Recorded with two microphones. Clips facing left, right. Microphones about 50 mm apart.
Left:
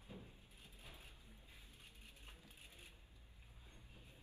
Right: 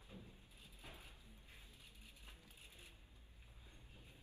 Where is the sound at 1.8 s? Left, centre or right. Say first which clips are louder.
Left 1 dB; left.